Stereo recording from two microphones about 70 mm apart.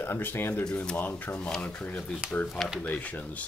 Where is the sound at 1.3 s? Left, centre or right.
Centre.